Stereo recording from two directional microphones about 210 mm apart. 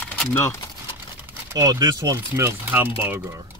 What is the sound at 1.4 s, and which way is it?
Speech, 15° right (ahead or behind).